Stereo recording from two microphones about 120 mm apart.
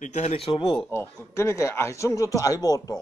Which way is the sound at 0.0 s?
85° left.